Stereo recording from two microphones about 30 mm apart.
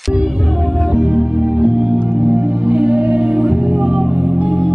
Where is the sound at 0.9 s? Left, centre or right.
Right.